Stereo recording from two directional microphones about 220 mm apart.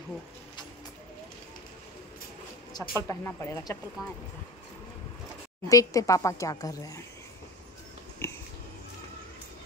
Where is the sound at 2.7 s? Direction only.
20° left (ahead or behind).